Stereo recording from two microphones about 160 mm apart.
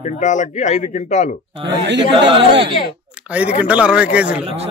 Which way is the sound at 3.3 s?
10° right (ahead or behind).